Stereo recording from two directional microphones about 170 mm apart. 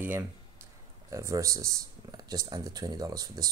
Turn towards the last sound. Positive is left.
turn(degrees=-20)  # may be behind; listen again after turning